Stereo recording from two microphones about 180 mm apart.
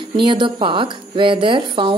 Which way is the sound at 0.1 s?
25° right (ahead or behind).